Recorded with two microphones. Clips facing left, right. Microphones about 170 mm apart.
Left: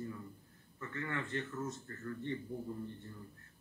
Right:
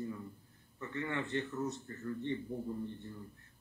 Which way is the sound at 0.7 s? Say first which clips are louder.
Right 3 dB; 25° right (ahead or behind).